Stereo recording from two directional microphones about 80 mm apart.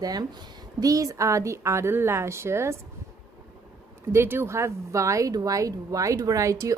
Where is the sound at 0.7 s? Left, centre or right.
Right.